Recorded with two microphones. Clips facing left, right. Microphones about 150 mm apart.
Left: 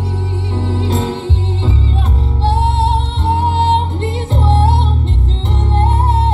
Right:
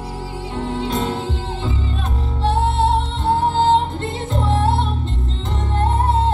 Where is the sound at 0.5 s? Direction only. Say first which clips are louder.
Left 3 dB; 30° left (ahead or behind).